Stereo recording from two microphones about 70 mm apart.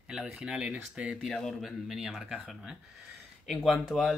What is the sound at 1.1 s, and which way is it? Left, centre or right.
Speech, centre.